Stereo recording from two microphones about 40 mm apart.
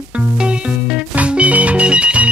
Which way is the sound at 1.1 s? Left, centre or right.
Right.